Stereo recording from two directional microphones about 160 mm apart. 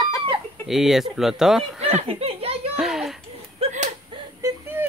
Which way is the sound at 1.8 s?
40° right (ahead or behind).